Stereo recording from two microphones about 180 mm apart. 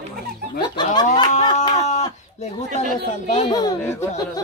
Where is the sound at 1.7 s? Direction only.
40° left (ahead or behind).